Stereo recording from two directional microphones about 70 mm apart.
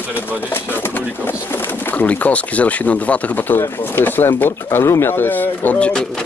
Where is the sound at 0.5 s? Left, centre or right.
Left.